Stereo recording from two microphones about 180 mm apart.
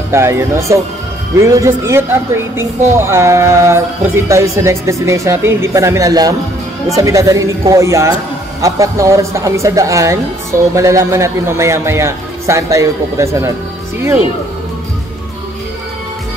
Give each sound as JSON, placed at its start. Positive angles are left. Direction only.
{"t": 0.1, "sound": "speech", "side_deg": -15}